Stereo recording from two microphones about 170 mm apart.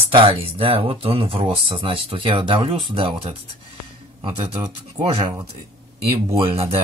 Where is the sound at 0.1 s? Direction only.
30° right (ahead or behind).